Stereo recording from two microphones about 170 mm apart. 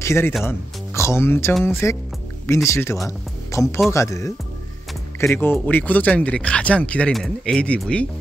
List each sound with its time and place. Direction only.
0.0 s speech: 15° left (ahead or behind)